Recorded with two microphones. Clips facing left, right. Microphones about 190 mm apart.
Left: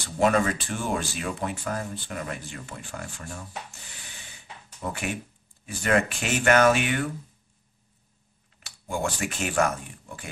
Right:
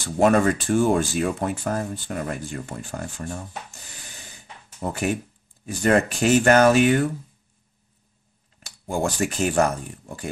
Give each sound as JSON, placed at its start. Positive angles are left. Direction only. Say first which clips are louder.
{"t": 0.2, "sound": "speech", "louder": "right 4 dB", "side_deg": -45}
{"t": 4.1, "sound": "gasp", "louder": "right 2 dB", "side_deg": -40}
{"t": 5.7, "sound": "speech", "louder": "right 5 dB", "side_deg": -40}
{"t": 8.5, "sound": "speech", "louder": "right 5 dB", "side_deg": -40}